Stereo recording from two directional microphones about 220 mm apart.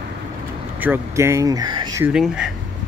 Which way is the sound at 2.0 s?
5° right (ahead or behind).